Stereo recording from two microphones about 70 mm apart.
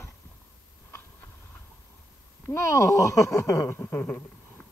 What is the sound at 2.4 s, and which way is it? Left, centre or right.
Speech, left.